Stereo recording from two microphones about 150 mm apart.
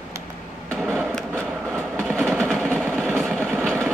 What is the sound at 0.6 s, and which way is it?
Train, 5° left (ahead or behind).